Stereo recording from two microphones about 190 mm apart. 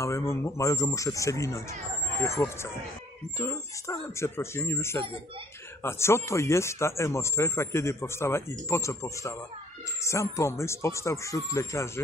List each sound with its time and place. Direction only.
0.0 s speech: 15° left (ahead or behind)